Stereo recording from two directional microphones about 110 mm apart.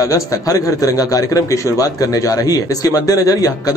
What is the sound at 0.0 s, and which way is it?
A man's voice, 30° left (ahead or behind).